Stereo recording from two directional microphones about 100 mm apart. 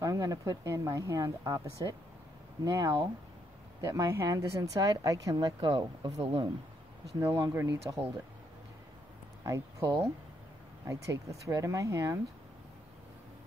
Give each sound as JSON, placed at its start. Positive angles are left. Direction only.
{"t": 0.0, "sound": "speech", "side_deg": -35}
{"t": 7.2, "sound": "speech", "side_deg": -30}
{"t": 7.6, "sound": "speech", "side_deg": -40}
{"t": 9.4, "sound": "a sound", "side_deg": -30}
{"t": 10.9, "sound": "speech", "side_deg": -30}